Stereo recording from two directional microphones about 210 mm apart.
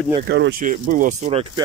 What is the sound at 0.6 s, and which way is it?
Speech, 40° right (ahead or behind).